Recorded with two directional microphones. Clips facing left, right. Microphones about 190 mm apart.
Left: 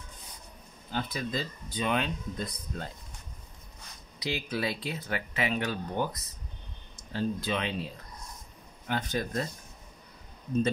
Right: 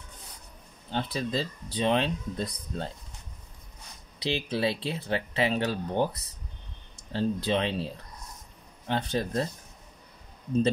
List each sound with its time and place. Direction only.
0.8 s speech: 30° right (ahead or behind)
4.2 s speech: 30° right (ahead or behind)